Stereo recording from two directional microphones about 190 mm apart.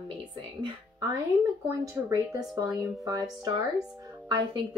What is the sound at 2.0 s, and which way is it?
Speech, 15° right (ahead or behind).